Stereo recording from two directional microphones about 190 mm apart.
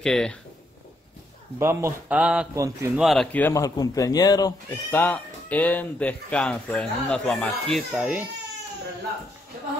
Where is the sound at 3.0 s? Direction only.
Centre (ahead or behind).